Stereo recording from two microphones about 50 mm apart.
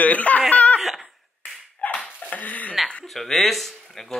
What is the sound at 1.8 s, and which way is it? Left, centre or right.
Dog, left.